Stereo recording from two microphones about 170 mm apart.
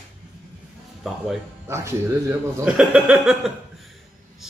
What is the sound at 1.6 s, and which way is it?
Speech, 15° right (ahead or behind).